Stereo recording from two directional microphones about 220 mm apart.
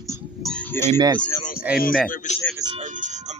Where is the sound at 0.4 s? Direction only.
5° left (ahead or behind).